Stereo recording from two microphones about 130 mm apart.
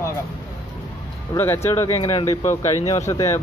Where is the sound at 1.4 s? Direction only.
20° left (ahead or behind).